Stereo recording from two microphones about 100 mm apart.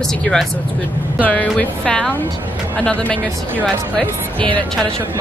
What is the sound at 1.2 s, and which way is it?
A woman's voice, 15° left (ahead or behind).